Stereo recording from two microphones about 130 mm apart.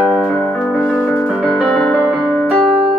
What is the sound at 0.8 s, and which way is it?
Music, 10° left (ahead or behind).